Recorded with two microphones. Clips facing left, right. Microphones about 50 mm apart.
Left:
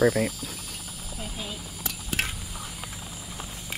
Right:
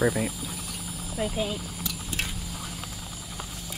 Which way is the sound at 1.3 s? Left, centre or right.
Right.